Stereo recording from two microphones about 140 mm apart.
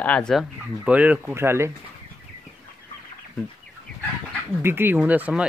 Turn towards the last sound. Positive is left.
turn(degrees=-10)  # may be behind; listen again after turning